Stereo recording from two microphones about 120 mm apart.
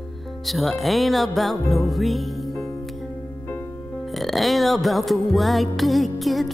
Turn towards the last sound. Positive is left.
turn(degrees=0)  # may be behind; listen again after turning